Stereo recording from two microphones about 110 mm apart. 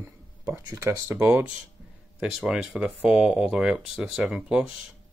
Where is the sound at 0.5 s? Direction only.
30° right (ahead or behind).